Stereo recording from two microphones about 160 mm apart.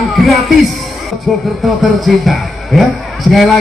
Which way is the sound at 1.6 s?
Centre (ahead or behind).